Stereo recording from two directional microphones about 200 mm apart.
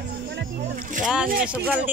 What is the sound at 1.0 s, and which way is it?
Speech, 5° right (ahead or behind).